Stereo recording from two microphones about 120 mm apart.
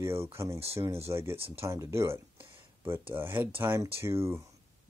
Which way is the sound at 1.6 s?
25° right (ahead or behind).